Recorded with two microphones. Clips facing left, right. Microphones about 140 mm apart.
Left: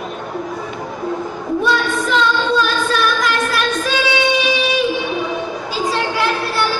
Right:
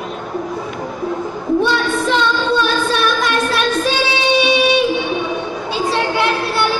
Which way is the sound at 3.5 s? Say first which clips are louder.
Right 2 dB; 25° right (ahead or behind).